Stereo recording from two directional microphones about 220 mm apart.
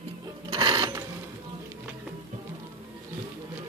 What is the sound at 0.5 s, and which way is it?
Mechanisms, 20° right (ahead or behind).